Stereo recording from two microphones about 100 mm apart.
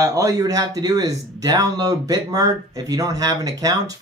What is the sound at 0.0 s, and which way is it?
Speech, 35° right (ahead or behind).